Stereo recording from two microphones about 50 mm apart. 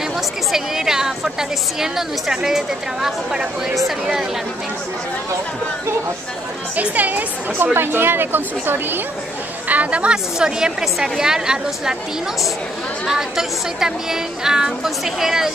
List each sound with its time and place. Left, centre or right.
0.5 s speech: centre
6.8 s speech: right
7.5 s speech: right
9.7 s speech: right
10.1 s speech: centre
13.0 s speech: centre